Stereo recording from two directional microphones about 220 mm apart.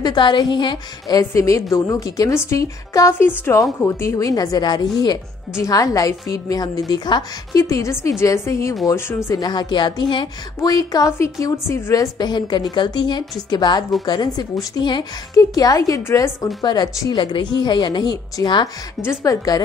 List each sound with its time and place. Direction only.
0.0 s a woman's voice: 20° left (ahead or behind)